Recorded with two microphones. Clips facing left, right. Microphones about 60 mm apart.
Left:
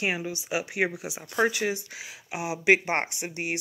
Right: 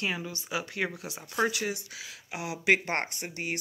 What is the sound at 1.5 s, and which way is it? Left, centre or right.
Speech, left.